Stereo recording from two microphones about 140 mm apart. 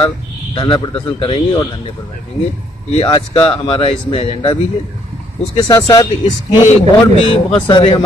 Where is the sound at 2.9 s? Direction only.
40° left (ahead or behind).